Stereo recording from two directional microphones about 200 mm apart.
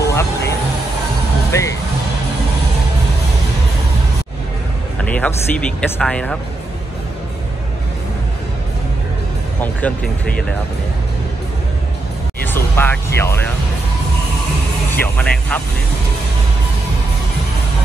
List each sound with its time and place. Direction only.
0.0 s vehicle: 15° left (ahead or behind)
1.5 s speech: 15° left (ahead or behind)
5.0 s music: 5° left (ahead or behind)
5.8 s speech: 5° left (ahead or behind)
9.6 s speech: 5° left (ahead or behind)
12.4 s speech: 10° left (ahead or behind)
15.0 s speech: 10° left (ahead or behind)